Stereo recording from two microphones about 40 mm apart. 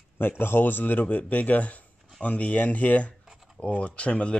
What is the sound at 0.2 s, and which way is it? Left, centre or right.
Speech, left.